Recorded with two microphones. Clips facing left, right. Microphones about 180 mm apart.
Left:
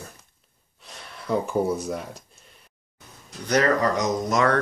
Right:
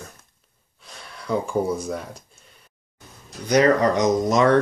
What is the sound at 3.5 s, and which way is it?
Speech, 20° right (ahead or behind).